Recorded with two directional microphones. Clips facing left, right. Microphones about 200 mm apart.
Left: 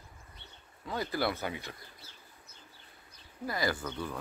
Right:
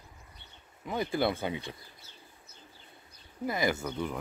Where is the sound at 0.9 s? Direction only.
20° right (ahead or behind).